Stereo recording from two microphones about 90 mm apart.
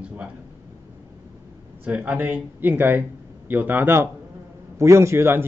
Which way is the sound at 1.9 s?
15° right (ahead or behind).